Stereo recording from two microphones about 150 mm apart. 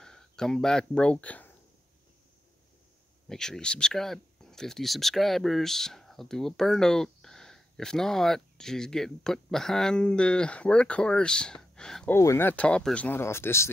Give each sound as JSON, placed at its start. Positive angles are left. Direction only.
{"t": 0.0, "sound": "speech", "side_deg": 5}
{"t": 3.3, "sound": "speech", "side_deg": 5}
{"t": 12.1, "sound": "speech", "side_deg": 15}